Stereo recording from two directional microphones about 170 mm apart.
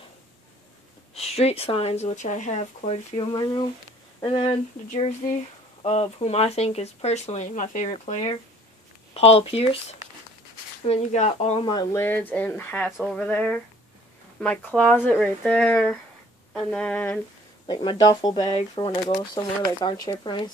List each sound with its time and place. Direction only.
1.1 s speech: 35° left (ahead or behind)
3.2 s speech: 25° left (ahead or behind)
11.7 s speech: 20° left (ahead or behind)
17.6 s speech: 25° left (ahead or behind)